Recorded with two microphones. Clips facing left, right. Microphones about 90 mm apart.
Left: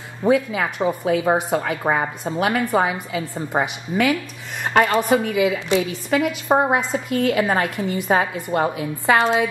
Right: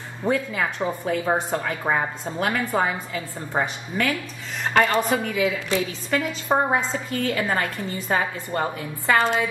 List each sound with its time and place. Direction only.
0.3 s a woman's voice: 5° left (ahead or behind)